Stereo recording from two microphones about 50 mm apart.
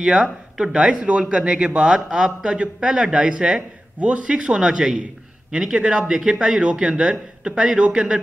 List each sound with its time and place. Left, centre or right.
0.0 s speech: right